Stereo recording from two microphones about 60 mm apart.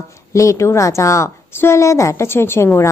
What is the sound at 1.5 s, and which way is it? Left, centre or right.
A woman's voice, left.